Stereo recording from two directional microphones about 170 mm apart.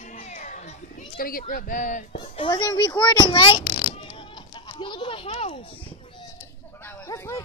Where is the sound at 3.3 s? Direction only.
30° left (ahead or behind).